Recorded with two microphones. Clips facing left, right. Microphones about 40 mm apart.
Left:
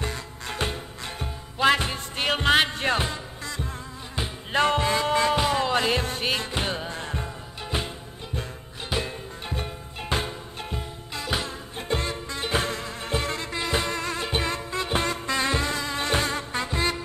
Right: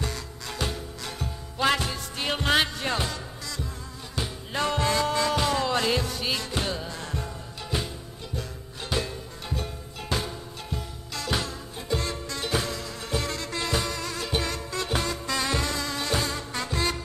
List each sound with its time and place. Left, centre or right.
0.0 s music: left
4.5 s music: left
4.7 s music: left
9.0 s music: left
12.5 s music: left
16.0 s music: left
16.6 s music: left